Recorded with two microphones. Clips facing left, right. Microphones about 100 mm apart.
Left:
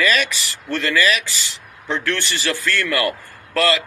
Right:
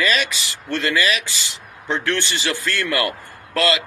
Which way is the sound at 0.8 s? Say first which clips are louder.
Left 2 dB; 20° right (ahead or behind).